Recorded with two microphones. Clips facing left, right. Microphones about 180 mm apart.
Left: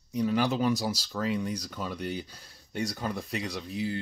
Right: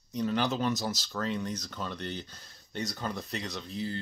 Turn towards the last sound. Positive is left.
turn(degrees=10)  # may be behind; listen again after turning